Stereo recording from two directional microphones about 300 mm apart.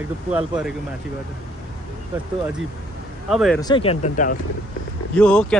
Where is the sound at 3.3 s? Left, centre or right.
Centre.